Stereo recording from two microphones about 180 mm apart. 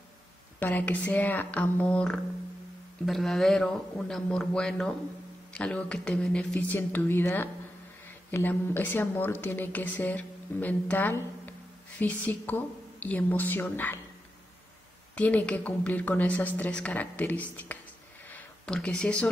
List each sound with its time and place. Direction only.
0.6 s a woman's voice: 10° left (ahead or behind)
15.1 s a woman's voice: 10° left (ahead or behind)
18.3 s a sound: 5° left (ahead or behind)